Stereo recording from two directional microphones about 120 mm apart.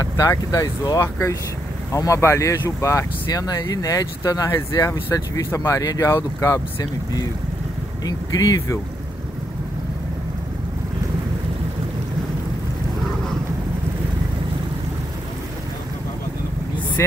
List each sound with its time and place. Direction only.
0.0 s speech: 30° left (ahead or behind)